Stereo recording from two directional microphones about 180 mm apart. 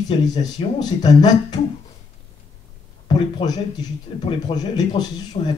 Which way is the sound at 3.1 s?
25° left (ahead or behind).